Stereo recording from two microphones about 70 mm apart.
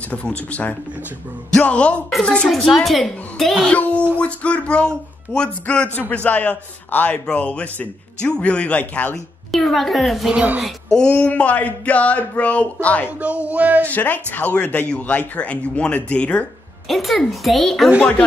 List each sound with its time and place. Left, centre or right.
0.1 s speech: centre
2.0 s a woman's voice: centre
3.7 s speech: left
9.5 s a woman's voice: centre; by 13.1 s left
13.2 s speech: centre
13.8 s speech: left
16.8 s a woman's voice: centre